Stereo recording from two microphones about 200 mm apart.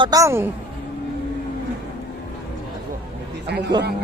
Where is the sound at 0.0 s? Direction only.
15° right (ahead or behind).